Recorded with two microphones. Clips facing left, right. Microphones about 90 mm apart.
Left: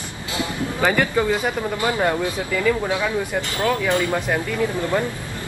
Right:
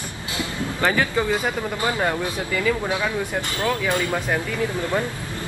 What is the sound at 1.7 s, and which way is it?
Speech, 20° left (ahead or behind).